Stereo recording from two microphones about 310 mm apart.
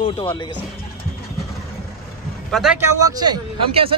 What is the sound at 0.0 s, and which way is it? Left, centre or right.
Speech, centre.